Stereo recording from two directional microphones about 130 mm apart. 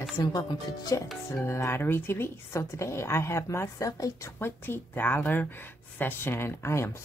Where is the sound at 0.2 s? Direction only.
30° left (ahead or behind).